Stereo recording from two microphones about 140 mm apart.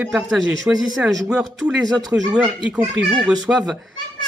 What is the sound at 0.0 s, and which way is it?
Speech, 5° right (ahead or behind).